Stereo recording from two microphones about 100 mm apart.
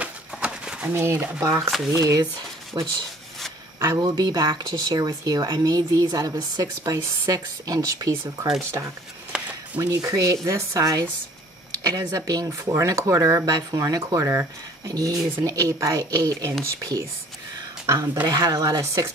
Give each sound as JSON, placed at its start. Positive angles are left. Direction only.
{"t": 0.0, "sound": "a sound", "side_deg": -10}
{"t": 0.9, "sound": "speech", "side_deg": -25}
{"t": 2.8, "sound": "speech", "side_deg": -50}
{"t": 4.0, "sound": "speech", "side_deg": -45}
{"t": 9.3, "sound": "a sound", "side_deg": -10}
{"t": 9.8, "sound": "speech", "side_deg": -35}
{"t": 17.8, "sound": "speech", "side_deg": -35}